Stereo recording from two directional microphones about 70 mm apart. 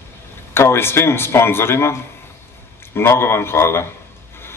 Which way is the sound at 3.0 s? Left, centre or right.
Left.